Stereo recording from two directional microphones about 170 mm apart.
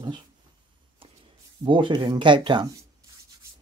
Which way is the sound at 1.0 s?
35° right (ahead or behind).